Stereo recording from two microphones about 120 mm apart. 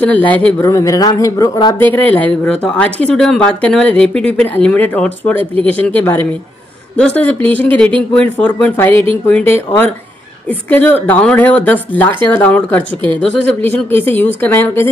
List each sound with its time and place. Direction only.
0.0 s speech: 10° left (ahead or behind)
0.6 s speech: 25° left (ahead or behind)
1.8 s speech: 15° left (ahead or behind)
10.7 s speech: 15° left (ahead or behind)